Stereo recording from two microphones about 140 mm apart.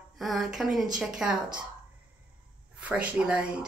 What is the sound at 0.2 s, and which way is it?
Speech, centre (ahead or behind).